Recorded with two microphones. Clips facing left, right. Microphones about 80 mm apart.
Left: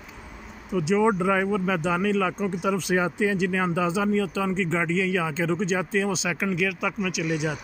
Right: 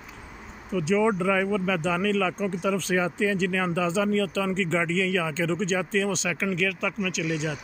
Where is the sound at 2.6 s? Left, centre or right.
Centre.